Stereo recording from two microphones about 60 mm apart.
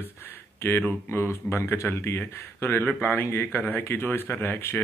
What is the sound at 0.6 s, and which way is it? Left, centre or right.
Speech, left.